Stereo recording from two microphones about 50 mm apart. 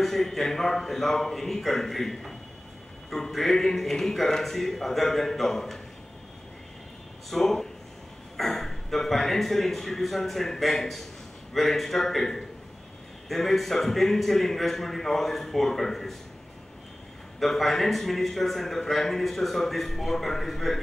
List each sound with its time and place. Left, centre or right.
0.0 s a man's voice: centre
7.2 s a man's voice: centre
17.4 s a man's voice: centre